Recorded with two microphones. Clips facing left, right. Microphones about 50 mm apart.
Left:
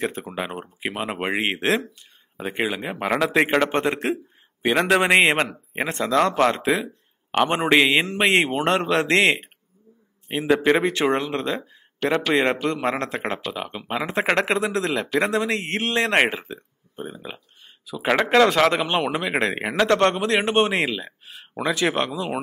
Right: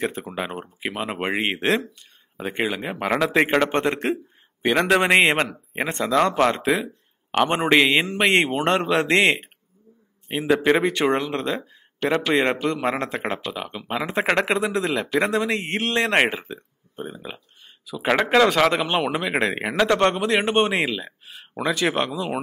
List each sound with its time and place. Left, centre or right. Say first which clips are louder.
0.0 s a man's voice: even; centre
10.9 s a man's voice: even; left; by 13.5 s centre
13.5 s a man's voice: even; centre